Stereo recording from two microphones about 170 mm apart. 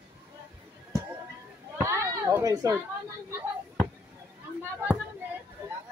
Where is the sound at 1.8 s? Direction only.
15° right (ahead or behind).